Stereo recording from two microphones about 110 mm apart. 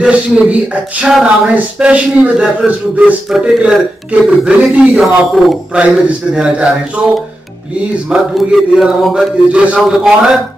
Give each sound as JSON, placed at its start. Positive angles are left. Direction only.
{"t": 0.0, "sound": "speech", "side_deg": -10}
{"t": 8.1, "sound": "speech", "side_deg": -5}